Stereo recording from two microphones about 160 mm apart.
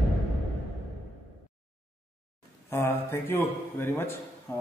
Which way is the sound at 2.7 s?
15° left (ahead or behind).